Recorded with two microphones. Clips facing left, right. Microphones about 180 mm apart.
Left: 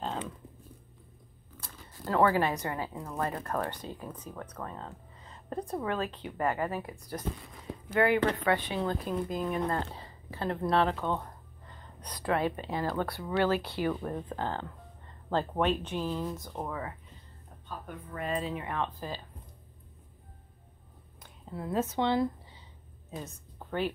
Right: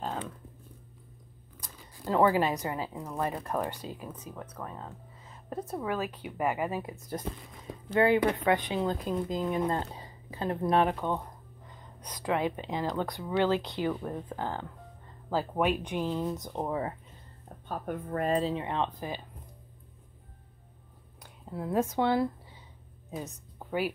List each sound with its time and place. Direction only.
1.6 s a woman's voice: 15° right (ahead or behind)
17.6 s speech: 50° right (ahead or behind); by 19.2 s 20° right (ahead or behind)
21.2 s a sound: 5° right (ahead or behind)
23.1 s a woman's voice: 10° right (ahead or behind)